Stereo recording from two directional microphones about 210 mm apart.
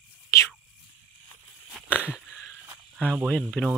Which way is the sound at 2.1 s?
5° right (ahead or behind).